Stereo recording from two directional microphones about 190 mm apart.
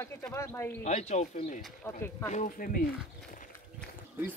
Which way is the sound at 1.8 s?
15° left (ahead or behind).